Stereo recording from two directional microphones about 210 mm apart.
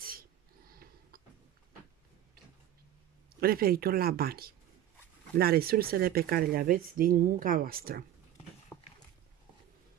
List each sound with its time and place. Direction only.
0.0 s a sound: 45° right (ahead or behind)
3.3 s speech: 45° right (ahead or behind)
8.7 s walk: 10° left (ahead or behind)